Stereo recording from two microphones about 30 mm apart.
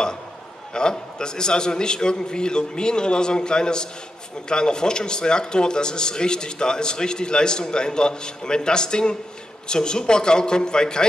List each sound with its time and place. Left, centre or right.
0.7 s a man's voice: left